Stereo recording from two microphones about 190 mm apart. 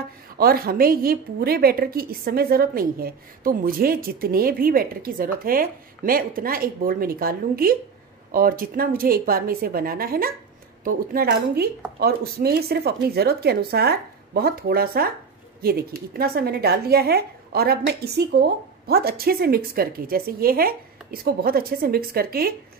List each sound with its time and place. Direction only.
0.4 s a woman's voice: 50° right (ahead or behind)
11.2 s a woman's voice: 60° right (ahead or behind)